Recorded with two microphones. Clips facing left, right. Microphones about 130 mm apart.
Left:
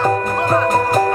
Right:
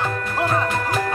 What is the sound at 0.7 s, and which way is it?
Music, 40° left (ahead or behind).